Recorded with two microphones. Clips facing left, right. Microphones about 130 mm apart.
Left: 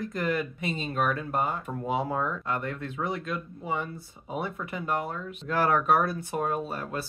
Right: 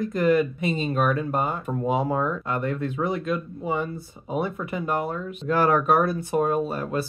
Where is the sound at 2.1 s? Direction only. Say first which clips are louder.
Right 5 dB; 35° right (ahead or behind).